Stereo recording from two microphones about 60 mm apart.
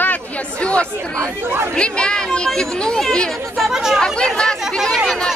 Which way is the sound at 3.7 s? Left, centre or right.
Centre.